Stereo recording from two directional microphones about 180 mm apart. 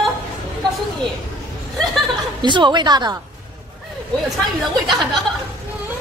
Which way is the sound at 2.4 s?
25° right (ahead or behind).